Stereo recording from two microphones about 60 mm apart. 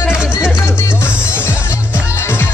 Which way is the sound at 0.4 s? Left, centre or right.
Left.